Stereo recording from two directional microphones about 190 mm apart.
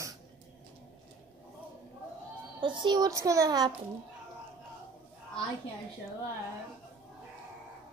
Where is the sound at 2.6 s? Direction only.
25° right (ahead or behind).